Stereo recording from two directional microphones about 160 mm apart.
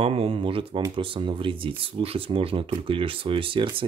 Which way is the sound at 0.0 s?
40° right (ahead or behind).